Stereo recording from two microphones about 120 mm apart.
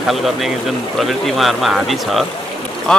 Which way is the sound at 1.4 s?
Centre (ahead or behind).